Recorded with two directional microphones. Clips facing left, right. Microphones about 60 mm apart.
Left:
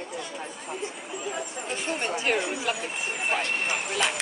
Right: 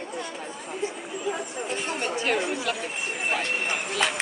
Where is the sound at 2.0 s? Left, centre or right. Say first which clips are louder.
Right 1 dB; centre.